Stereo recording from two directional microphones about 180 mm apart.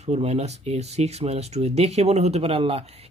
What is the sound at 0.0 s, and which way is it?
Speech, 35° right (ahead or behind).